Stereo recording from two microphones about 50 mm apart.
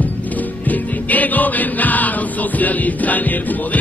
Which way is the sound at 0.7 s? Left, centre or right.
Left.